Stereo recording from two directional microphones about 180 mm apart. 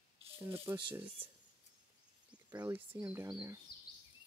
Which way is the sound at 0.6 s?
15° right (ahead or behind).